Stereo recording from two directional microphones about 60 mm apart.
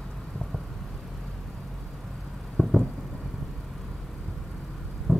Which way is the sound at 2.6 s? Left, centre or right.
Centre.